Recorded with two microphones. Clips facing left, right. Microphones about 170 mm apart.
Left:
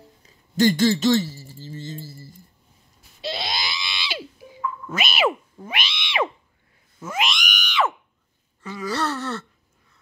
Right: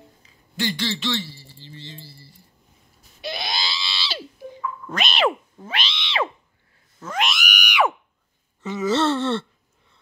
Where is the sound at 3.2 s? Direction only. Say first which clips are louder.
Left 1 dB; 25° left (ahead or behind).